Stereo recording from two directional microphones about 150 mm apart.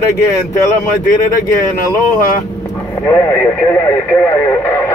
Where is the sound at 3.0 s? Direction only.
20° left (ahead or behind).